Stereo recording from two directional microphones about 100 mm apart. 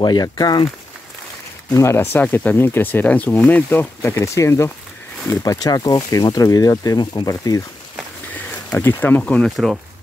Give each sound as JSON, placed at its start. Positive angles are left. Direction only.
{"t": 0.0, "sound": "speech", "side_deg": 45}
{"t": 1.7, "sound": "speech", "side_deg": 30}
{"t": 8.5, "sound": "speech", "side_deg": 20}